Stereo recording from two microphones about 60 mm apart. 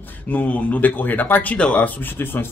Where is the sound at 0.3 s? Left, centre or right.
Left.